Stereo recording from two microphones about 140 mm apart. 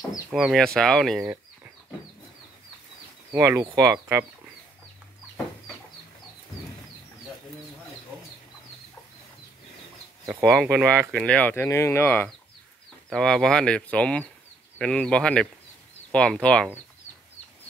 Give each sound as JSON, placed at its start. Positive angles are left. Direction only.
{"t": 0.3, "sound": "speech", "side_deg": 0}
{"t": 3.3, "sound": "speech", "side_deg": -20}
{"t": 10.7, "sound": "speech", "side_deg": -20}
{"t": 11.1, "sound": "speech", "side_deg": 5}
{"t": 13.1, "sound": "speech", "side_deg": 5}